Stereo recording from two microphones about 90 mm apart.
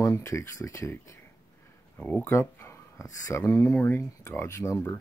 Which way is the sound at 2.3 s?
35° left (ahead or behind).